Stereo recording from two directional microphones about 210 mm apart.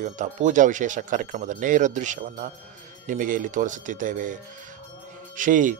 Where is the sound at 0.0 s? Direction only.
35° right (ahead or behind).